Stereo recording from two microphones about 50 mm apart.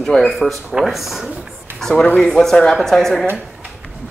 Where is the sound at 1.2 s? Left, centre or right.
Right.